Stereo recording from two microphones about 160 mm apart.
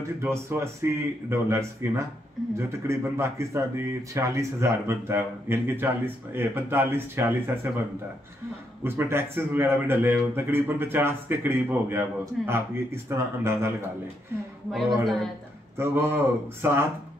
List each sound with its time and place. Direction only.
0.2 s speech: 15° right (ahead or behind)
8.8 s speech: 15° right (ahead or behind)
14.7 s a man's voice: centre (ahead or behind)
15.8 s speech: 15° right (ahead or behind)